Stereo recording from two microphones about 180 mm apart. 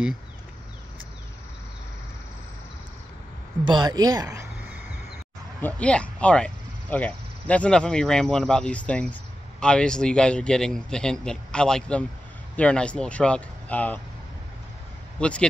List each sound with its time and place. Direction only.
3.6 s a woman's voice: 25° right (ahead or behind)
5.6 s a man's voice: 10° left (ahead or behind)
15.1 s speech: 5° left (ahead or behind)